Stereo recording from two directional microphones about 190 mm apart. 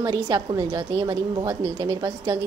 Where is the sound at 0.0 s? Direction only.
20° right (ahead or behind).